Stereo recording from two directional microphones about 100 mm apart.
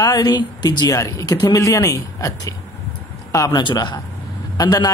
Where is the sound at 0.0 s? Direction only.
40° left (ahead or behind).